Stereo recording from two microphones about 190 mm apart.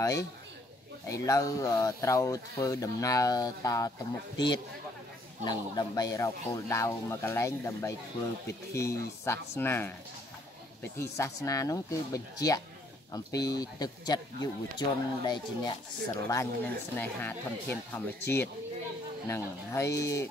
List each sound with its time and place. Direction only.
0.0 s speech: 15° left (ahead or behind)
5.4 s speech: 20° left (ahead or behind)
11.0 s speech: 15° left (ahead or behind)